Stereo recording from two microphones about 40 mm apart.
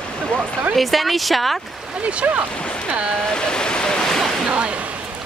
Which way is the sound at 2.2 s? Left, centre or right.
Right.